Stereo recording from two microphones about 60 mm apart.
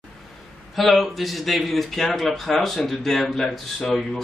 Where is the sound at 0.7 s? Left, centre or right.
Centre.